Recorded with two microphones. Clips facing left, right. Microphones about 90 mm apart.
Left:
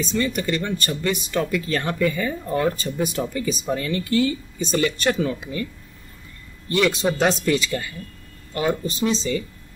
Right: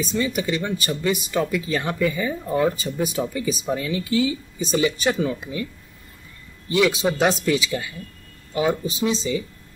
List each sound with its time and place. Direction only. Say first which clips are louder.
0.0 s speech: even; 5° right (ahead or behind)